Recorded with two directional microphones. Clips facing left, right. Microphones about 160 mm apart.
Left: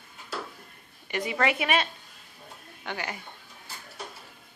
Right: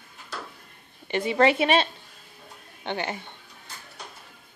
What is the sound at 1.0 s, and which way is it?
A woman's voice, 30° right (ahead or behind).